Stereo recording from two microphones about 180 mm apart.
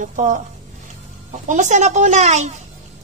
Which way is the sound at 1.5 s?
40° right (ahead or behind).